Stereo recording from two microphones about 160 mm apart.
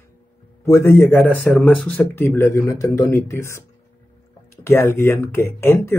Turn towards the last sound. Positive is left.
turn(degrees=15)  # may be behind; listen again after turning